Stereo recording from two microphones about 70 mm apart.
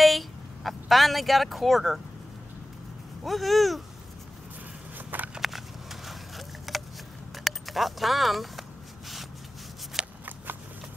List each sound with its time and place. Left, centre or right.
0.0 s speech: centre
3.3 s speech: centre
4.9 s a sound: right
5.3 s a sound: centre
7.3 s keys jangling: centre
10.0 s shuffling cards: centre